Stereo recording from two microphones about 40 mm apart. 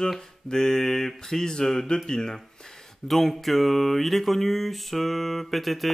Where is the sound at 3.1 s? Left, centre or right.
Centre.